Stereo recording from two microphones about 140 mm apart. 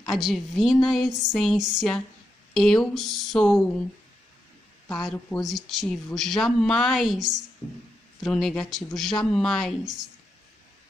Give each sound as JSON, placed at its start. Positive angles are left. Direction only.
{"t": 0.0, "sound": "speech", "side_deg": 5}
{"t": 4.8, "sound": "speech", "side_deg": 5}